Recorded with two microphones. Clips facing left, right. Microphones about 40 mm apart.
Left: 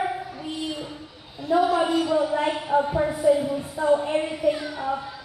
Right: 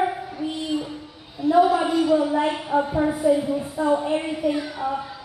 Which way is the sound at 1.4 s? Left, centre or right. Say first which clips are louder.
Right 3 dB; centre.